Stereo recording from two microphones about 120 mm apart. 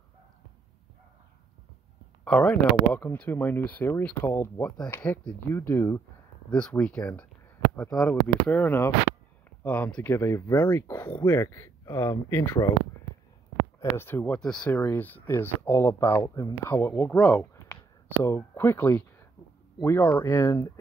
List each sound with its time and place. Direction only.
2.2 s speech: 10° left (ahead or behind)
6.5 s speech: 10° left (ahead or behind)
10.0 s speech: 20° left (ahead or behind)
13.7 s speech: 20° left (ahead or behind)